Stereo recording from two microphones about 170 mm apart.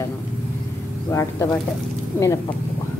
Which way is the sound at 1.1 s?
15° left (ahead or behind).